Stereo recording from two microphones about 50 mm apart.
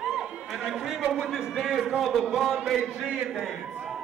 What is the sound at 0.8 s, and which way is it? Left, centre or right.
A man's voice, centre.